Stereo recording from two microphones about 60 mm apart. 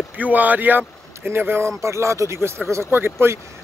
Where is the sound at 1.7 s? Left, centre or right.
Right.